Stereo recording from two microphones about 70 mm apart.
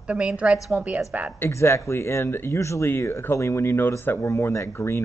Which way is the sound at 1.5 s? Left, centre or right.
Left.